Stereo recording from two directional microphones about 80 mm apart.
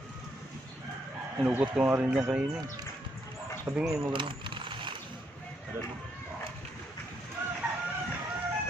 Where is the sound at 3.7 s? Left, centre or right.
Right.